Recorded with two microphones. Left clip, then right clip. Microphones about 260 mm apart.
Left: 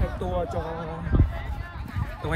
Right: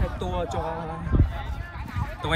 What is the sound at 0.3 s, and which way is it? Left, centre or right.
Speech, right.